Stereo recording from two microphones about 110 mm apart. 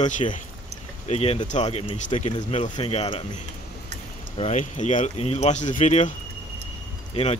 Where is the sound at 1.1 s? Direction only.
65° left (ahead or behind).